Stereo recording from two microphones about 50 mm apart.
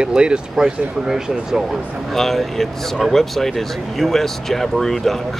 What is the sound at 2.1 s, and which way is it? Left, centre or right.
Speech, centre.